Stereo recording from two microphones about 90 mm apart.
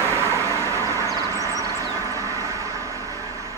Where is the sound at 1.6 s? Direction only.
35° left (ahead or behind).